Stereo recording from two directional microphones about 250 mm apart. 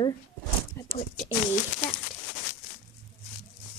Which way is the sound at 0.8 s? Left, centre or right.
Centre.